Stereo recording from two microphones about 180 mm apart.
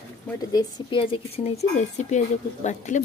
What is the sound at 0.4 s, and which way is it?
Speech, 20° left (ahead or behind).